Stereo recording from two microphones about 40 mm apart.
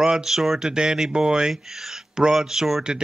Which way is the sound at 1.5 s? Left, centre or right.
Centre.